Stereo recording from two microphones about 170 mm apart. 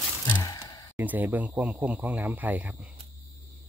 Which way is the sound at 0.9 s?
10° right (ahead or behind).